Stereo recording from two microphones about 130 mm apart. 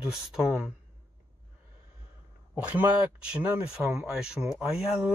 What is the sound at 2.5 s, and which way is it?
Speech, 10° right (ahead or behind).